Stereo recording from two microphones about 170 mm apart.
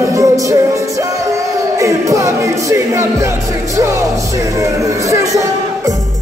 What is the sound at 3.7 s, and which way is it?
Speech, 15° right (ahead or behind).